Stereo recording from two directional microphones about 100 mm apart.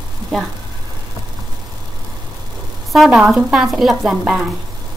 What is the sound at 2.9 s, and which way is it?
Speech, centre (ahead or behind).